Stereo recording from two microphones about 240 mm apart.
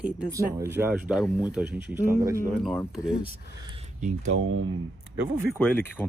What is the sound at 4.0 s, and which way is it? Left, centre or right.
Speech, right.